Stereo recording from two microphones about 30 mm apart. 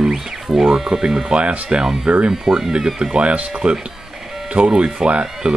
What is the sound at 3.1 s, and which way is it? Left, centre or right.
Speech, right.